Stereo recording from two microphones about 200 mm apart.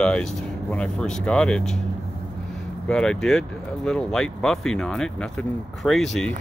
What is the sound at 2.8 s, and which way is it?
Speech, 5° left (ahead or behind).